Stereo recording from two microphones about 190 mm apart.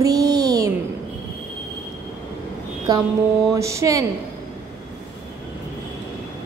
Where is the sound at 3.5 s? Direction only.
15° right (ahead or behind).